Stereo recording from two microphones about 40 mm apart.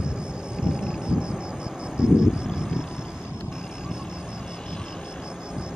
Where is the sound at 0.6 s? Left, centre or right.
Centre.